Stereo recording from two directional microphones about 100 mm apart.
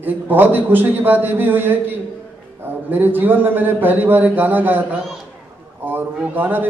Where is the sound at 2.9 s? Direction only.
20° right (ahead or behind).